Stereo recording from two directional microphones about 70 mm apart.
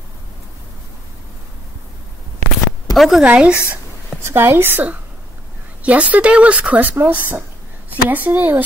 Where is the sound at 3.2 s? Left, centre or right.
Centre.